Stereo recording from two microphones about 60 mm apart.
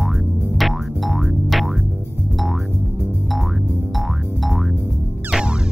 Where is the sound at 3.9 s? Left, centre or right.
Centre.